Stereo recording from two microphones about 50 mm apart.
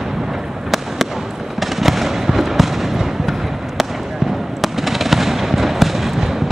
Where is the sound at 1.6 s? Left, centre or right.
Centre.